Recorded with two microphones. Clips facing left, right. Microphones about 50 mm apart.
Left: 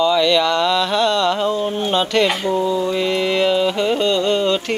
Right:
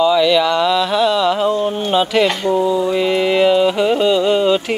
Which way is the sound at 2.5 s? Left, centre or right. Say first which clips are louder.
Right 3 dB; centre.